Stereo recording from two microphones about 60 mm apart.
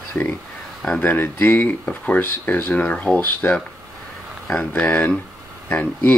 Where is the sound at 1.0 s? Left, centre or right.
Left.